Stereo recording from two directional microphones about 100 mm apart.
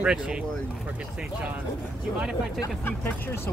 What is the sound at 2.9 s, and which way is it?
Speech, 20° left (ahead or behind).